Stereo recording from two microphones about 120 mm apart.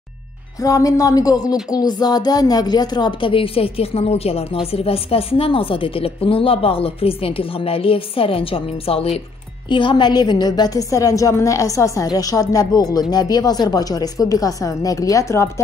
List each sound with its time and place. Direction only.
0.6 s music: 30° left (ahead or behind); by 9.2 s 55° left (ahead or behind)
9.7 s a woman's voice: 40° left (ahead or behind); by 15.5 s 25° left (ahead or behind)